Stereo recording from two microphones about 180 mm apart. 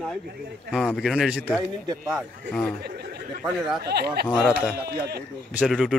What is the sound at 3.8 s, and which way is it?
Speech, 65° right (ahead or behind).